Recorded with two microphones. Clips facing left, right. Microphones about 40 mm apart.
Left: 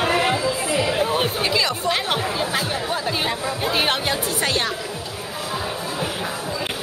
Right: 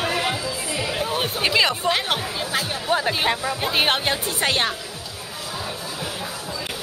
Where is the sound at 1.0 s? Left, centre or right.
Centre.